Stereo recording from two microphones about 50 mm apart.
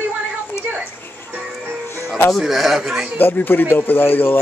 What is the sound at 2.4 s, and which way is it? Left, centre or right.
Speech, centre.